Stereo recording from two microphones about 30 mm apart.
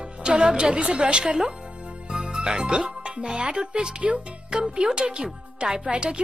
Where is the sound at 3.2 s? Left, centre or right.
Right.